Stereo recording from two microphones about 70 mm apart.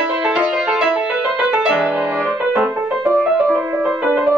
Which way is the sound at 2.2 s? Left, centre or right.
Centre.